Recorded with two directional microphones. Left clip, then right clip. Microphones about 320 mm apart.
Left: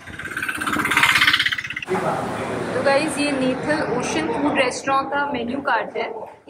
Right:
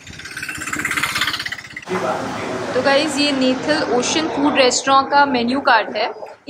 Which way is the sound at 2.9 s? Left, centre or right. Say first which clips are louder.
Right 3 dB; centre.